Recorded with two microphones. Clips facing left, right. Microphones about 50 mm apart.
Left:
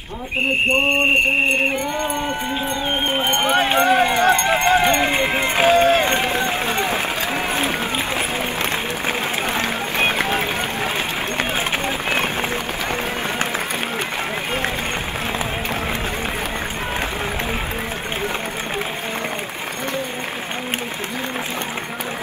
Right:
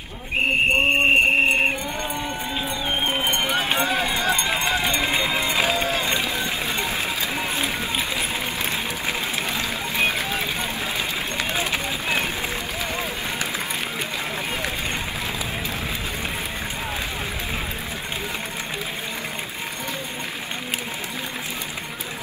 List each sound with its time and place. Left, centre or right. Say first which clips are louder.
0.7 s a sound: left 2 dB; centre
3.1 s run: left 6 dB; left
9.5 s run: left 4 dB; left